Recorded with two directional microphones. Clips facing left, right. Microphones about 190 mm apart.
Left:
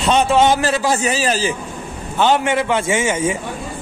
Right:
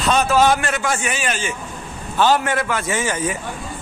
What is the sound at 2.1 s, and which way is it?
A man's voice, 20° left (ahead or behind).